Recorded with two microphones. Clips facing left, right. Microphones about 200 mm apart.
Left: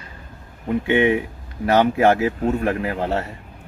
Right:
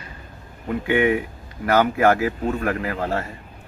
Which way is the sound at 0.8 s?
25° left (ahead or behind).